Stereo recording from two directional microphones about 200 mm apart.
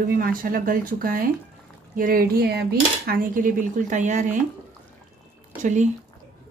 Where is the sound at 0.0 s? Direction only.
45° right (ahead or behind).